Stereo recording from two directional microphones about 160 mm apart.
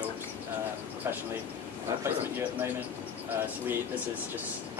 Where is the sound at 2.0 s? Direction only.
15° right (ahead or behind).